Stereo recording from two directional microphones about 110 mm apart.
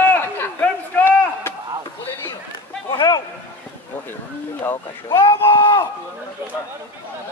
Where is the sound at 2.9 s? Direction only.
40° left (ahead or behind).